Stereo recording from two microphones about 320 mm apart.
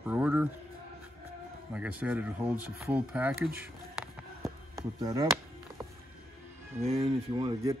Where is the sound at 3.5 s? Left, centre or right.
Centre.